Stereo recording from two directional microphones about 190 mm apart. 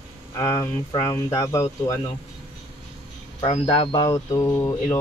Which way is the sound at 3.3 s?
30° left (ahead or behind).